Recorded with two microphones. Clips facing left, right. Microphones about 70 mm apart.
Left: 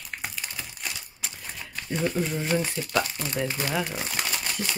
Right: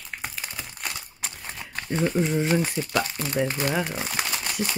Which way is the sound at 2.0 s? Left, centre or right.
Centre.